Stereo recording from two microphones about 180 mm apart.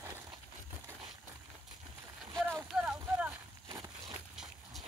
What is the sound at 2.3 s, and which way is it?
Vehicle, 15° right (ahead or behind).